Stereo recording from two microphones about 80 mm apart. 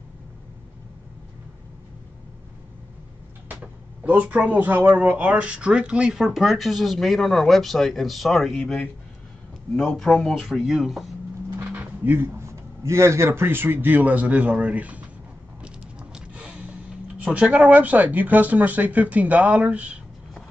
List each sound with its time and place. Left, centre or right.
4.0 s speech: centre
11.7 s speech: right
15.6 s a sound: centre
17.2 s speech: centre